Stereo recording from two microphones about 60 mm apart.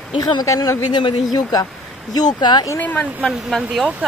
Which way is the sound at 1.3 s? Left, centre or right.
Left.